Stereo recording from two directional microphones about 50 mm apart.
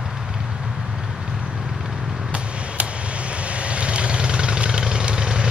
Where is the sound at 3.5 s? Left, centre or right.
Right.